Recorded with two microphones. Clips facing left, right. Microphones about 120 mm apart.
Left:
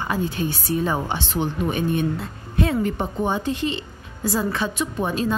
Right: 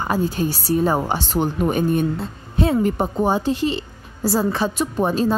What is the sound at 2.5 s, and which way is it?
A woman's voice, 30° right (ahead or behind).